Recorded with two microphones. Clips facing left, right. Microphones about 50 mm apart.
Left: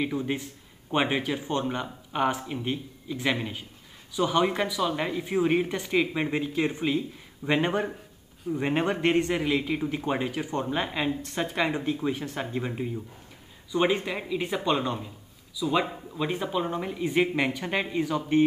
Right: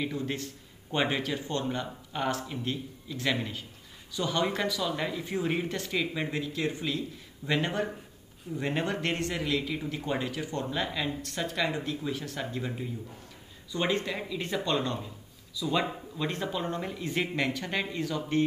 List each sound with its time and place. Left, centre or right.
0.0 s a man's voice: centre